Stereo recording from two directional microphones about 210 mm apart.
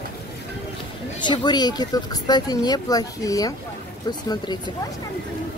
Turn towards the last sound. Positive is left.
turn(degrees=20)  # may be behind; listen again after turning